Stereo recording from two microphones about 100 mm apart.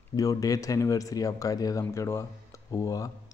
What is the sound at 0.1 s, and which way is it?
Speech, 35° left (ahead or behind).